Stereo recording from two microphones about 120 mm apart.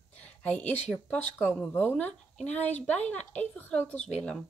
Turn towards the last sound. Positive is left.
turn(degrees=5)  # may be behind; listen again after turning